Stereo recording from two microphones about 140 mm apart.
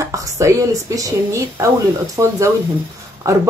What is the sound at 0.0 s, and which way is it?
A woman's voice, 25° right (ahead or behind).